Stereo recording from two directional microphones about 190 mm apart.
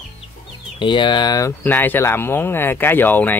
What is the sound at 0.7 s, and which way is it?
Speech, 25° left (ahead or behind).